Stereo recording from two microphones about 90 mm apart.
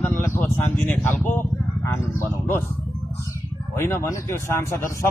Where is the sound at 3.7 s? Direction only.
30° left (ahead or behind).